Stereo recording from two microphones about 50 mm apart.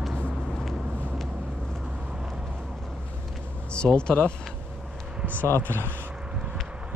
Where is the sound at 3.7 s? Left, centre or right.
Centre.